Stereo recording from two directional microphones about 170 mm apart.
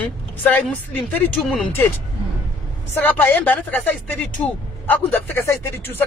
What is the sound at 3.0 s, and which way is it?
Speech, 10° left (ahead or behind).